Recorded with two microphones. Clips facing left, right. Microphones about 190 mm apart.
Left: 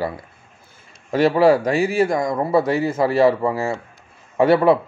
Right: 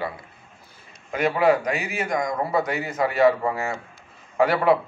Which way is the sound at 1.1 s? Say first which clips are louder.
Left 5 dB; 30° left (ahead or behind).